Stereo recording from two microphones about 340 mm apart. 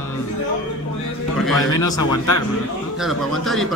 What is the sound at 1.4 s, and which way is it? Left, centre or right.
Speech, centre.